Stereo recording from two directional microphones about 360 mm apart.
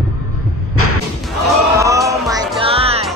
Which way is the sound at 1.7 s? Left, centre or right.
Centre.